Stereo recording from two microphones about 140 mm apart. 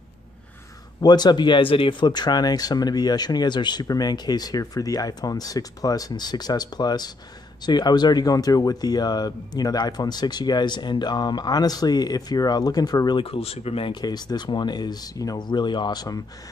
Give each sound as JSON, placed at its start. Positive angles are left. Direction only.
{"t": 1.0, "sound": "speech", "side_deg": 30}